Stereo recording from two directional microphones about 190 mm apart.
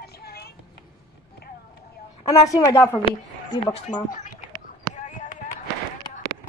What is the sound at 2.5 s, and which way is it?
Speech, 15° left (ahead or behind).